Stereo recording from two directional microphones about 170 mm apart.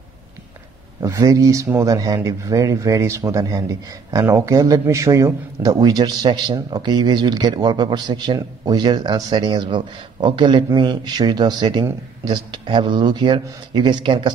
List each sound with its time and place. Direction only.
1.0 s speech: 20° right (ahead or behind)